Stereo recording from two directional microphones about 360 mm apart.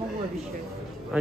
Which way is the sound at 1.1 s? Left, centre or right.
Centre.